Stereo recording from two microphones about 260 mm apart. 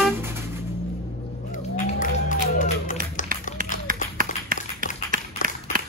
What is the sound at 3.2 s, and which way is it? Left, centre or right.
Run, left.